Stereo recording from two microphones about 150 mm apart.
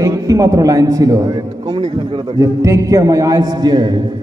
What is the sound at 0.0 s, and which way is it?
A man's voice, 20° right (ahead or behind).